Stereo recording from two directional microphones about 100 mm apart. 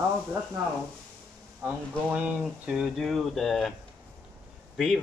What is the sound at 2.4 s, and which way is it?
Speech, 5° right (ahead or behind).